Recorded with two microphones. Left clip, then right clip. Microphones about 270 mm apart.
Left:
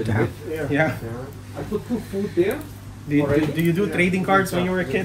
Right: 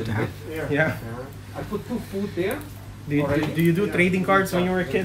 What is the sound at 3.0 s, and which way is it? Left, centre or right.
Speech, centre.